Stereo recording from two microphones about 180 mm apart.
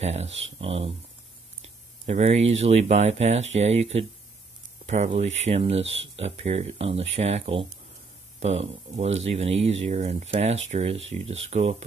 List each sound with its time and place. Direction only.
0.0 s speech: 35° right (ahead or behind)
2.0 s speech: 35° right (ahead or behind)